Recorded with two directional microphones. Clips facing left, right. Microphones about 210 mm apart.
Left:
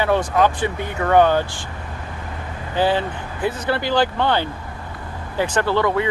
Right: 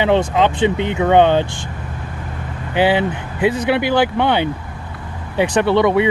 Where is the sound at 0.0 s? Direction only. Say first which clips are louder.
Right 3 dB; 20° right (ahead or behind).